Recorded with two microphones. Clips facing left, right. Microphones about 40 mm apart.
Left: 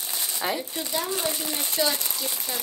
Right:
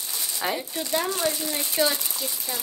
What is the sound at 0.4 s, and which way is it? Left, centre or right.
Speech, centre.